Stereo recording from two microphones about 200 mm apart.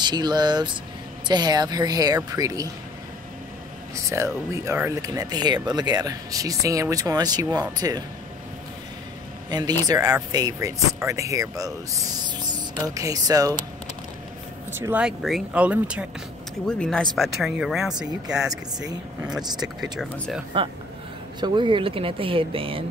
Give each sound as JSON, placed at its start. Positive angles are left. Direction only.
{"t": 0.0, "sound": "speech", "side_deg": -20}
{"t": 3.9, "sound": "speech", "side_deg": -15}
{"t": 9.5, "sound": "speech", "side_deg": -20}
{"t": 14.7, "sound": "speech", "side_deg": -10}
{"t": 16.6, "sound": "speech", "side_deg": 5}
{"t": 21.4, "sound": "speech", "side_deg": -25}